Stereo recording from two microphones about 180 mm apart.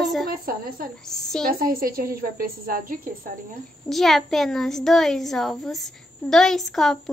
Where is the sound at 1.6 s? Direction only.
55° right (ahead or behind).